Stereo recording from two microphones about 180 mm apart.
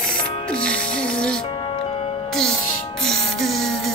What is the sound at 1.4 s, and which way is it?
Music, 30° left (ahead or behind).